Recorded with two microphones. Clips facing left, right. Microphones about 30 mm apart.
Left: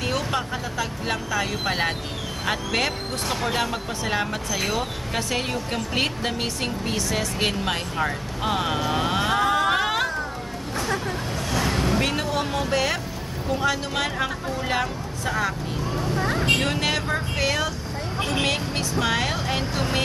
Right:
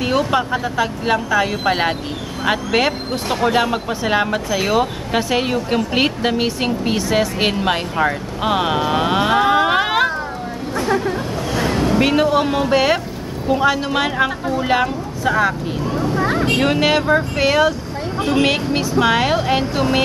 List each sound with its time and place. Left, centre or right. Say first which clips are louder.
0.0 s speech: right 8 dB; centre
11.5 s speech: right 6 dB; centre